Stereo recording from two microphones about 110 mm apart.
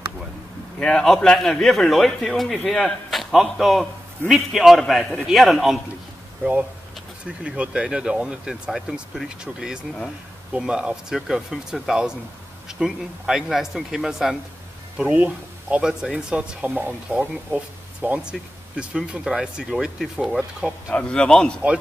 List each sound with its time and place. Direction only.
0.7 s a man's voice: 5° left (ahead or behind)
7.2 s a man's voice: 10° right (ahead or behind)
20.9 s a man's voice: 10° left (ahead or behind)